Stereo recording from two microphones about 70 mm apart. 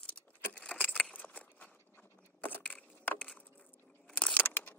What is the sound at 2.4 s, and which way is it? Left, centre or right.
Crushing, left.